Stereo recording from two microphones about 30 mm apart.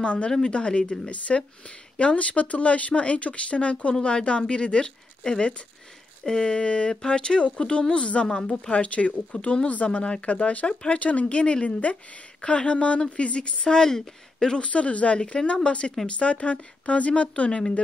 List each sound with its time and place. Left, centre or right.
0.0 s a woman's voice: left
9.3 s a woman's voice: left
10.2 s speech: left
10.7 s a woman's voice: left
11.0 s a woman's voice: left
13.7 s speech: left
14.6 s speech: left
15.3 s a woman's voice: left
17.5 s speech: left